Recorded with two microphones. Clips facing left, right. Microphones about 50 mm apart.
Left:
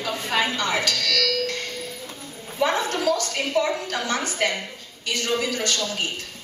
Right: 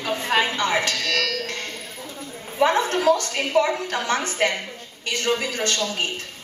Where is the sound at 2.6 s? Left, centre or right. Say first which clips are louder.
Right 3 dB; right.